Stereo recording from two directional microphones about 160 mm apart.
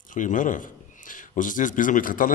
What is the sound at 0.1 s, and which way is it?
Speech, 55° left (ahead or behind).